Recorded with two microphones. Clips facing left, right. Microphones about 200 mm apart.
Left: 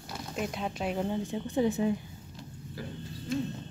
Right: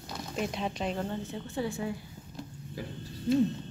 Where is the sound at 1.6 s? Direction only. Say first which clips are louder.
Left 6 dB; 20° left (ahead or behind).